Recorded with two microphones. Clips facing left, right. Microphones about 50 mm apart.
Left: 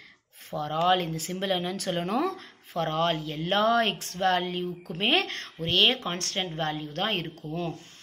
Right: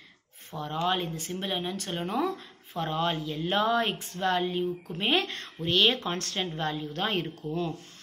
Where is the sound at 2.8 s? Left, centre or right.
Left.